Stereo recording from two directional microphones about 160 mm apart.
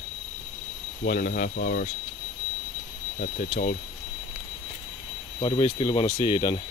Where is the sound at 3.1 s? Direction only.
65° left (ahead or behind).